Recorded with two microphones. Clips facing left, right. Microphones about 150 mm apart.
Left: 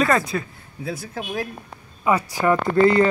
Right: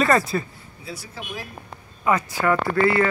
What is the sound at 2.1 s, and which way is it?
Speech, 15° left (ahead or behind).